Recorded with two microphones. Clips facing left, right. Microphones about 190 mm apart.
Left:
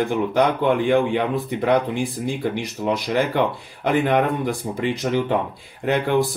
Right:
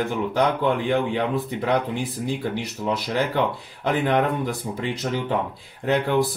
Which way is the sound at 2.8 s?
15° left (ahead or behind).